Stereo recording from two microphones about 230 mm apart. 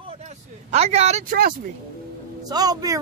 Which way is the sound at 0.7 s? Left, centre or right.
Right.